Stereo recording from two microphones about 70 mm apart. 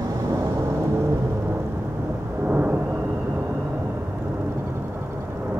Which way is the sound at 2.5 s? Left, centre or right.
Right.